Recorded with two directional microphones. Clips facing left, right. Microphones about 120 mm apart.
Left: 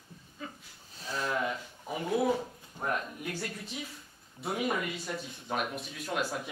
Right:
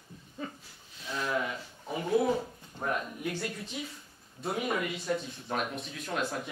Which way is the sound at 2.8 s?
10° left (ahead or behind).